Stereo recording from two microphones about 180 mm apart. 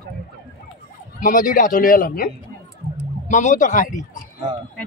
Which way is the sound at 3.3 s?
45° left (ahead or behind).